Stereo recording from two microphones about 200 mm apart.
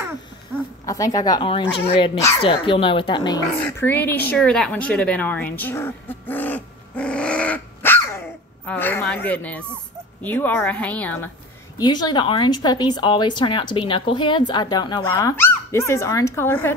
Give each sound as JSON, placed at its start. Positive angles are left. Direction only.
{"t": 0.8, "sound": "a woman's voice", "side_deg": 15}
{"t": 3.6, "sound": "a sound", "side_deg": 10}
{"t": 10.2, "sound": "a woman's voice", "side_deg": 10}
{"t": 11.8, "sound": "a woman's voice", "side_deg": 20}